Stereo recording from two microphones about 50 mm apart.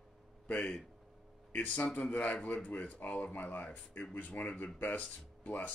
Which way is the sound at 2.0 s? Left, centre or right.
Left.